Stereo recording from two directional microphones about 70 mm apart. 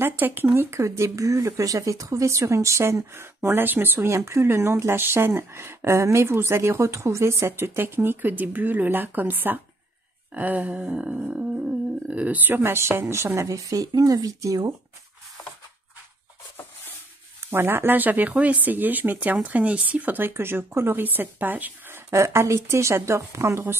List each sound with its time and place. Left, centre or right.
0.0 s speech: right
0.6 s speech: right
10.3 s music: right
12.1 s speech: centre; by 14.7 s right
17.5 s speech: right